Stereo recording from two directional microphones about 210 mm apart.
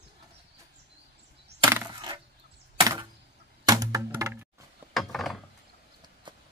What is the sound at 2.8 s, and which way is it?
Chop, 15° right (ahead or behind).